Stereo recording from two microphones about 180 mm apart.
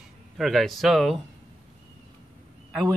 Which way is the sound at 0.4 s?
Centre (ahead or behind).